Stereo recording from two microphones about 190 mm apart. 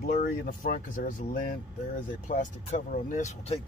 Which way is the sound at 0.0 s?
45° left (ahead or behind).